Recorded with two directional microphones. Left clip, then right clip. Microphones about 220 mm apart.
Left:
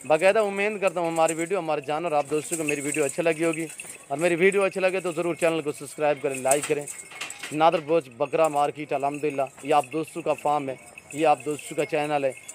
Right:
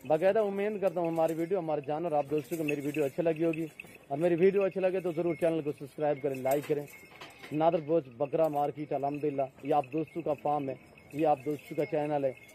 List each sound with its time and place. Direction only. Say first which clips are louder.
0.1 s speech: left 6 dB; 35° left (ahead or behind)